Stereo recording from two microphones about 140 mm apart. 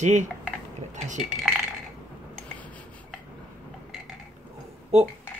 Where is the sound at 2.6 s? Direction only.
10° left (ahead or behind).